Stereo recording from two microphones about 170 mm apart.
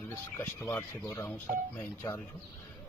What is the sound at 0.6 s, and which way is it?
Speech, 15° left (ahead or behind).